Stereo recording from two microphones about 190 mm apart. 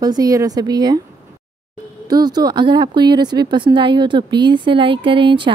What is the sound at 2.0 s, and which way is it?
Speech, 20° right (ahead or behind).